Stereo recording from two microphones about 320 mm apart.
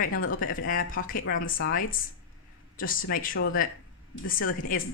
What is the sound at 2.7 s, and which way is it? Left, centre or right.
A woman's voice, left.